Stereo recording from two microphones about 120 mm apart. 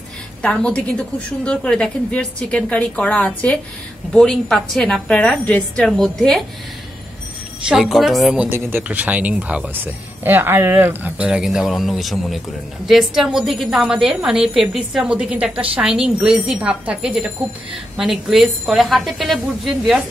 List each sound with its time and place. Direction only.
0.4 s a woman's voice: 10° left (ahead or behind)
7.6 s a woman's voice: centre (ahead or behind)
8.4 s a woman's voice: 20° right (ahead or behind); by 20.0 s centre (ahead or behind)